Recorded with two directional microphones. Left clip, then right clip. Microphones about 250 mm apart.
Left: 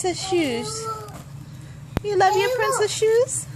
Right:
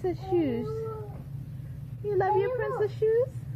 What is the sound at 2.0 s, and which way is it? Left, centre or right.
A woman's voice, centre.